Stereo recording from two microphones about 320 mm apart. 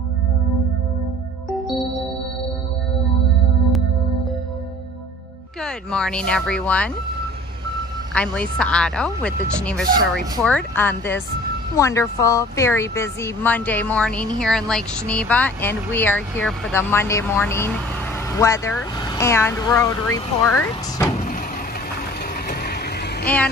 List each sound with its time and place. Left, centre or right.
1.5 s music: centre
5.6 s speech: centre
8.1 s a woman's voice: centre
22.5 s vehicle: left
23.2 s speech: centre